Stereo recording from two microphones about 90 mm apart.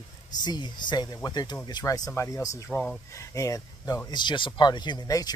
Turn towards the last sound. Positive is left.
turn(degrees=45)  # may be behind; listen again after turning